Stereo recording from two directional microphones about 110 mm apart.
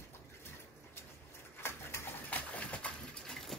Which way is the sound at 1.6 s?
25° left (ahead or behind).